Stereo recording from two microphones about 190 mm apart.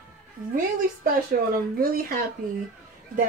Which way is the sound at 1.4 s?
55° right (ahead or behind).